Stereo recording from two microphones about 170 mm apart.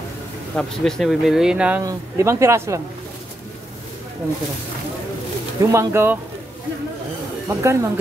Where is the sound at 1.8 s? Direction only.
20° right (ahead or behind).